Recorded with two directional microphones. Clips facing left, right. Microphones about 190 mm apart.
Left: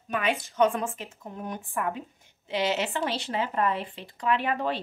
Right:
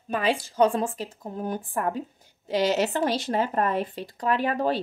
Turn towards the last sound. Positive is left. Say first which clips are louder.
# right 3 dB
turn(degrees=-40)  # may be behind; listen again after turning